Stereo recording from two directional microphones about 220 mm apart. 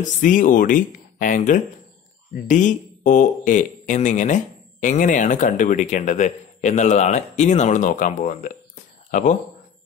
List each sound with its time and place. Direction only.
0.2 s speech: 35° left (ahead or behind)